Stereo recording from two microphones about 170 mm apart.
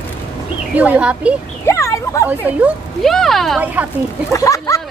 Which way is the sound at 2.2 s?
10° right (ahead or behind).